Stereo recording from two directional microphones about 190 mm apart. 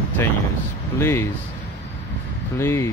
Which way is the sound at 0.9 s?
15° left (ahead or behind).